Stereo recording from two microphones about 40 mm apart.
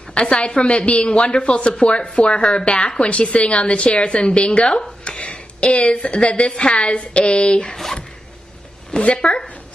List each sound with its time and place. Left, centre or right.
0.3 s a woman's voice: left
7.7 s speech: centre
8.9 s a woman's voice: left